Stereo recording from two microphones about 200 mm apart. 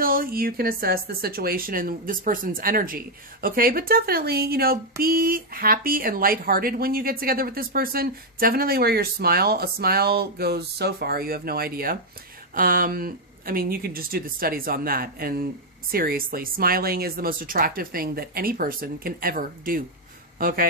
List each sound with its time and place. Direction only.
0.0 s speech: 45° right (ahead or behind)